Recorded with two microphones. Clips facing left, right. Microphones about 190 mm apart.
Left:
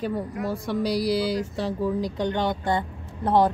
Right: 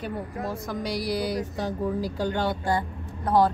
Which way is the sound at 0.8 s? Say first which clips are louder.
Left 5 dB; 35° left (ahead or behind).